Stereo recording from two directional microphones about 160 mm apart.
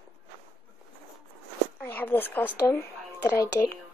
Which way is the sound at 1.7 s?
10° left (ahead or behind).